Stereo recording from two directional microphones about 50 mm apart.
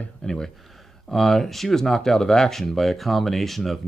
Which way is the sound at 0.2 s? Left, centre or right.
Centre.